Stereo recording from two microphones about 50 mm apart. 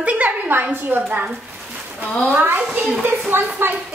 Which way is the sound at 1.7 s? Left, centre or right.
Right.